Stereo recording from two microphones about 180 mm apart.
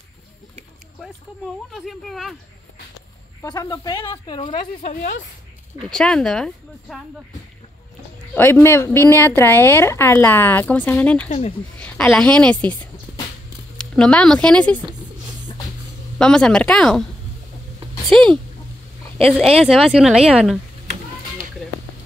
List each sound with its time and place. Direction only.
1.7 s speech: centre (ahead or behind)
3.4 s speech: 20° left (ahead or behind)
5.8 s speech: 5° left (ahead or behind)
8.4 s speech: 10° left (ahead or behind)
11.2 s speech: 35° left (ahead or behind)
11.8 s a woman's voice: 5° left (ahead or behind)
13.7 s speech: 5° left (ahead or behind)
16.2 s speech: 5° left (ahead or behind)
18.0 s speech: 5° left (ahead or behind)
19.6 s speech: 5° right (ahead or behind)